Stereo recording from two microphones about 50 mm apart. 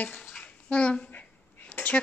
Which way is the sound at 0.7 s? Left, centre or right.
Left.